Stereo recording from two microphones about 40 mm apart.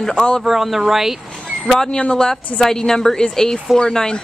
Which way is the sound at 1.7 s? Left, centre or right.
Centre.